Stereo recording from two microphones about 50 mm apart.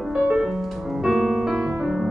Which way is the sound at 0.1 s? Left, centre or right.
Centre.